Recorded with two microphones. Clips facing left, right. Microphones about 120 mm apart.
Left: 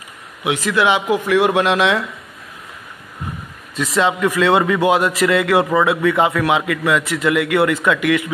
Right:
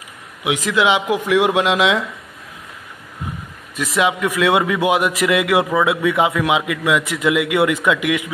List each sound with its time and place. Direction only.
0.4 s a man's voice: 15° right (ahead or behind)
3.7 s a man's voice: 10° right (ahead or behind)